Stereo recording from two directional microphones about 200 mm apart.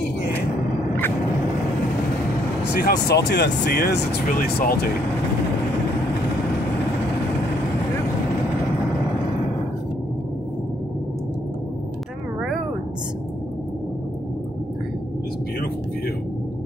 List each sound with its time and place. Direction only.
2.7 s speech: 55° left (ahead or behind)